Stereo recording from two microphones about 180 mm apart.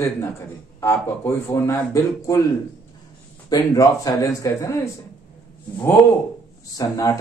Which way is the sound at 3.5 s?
20° left (ahead or behind).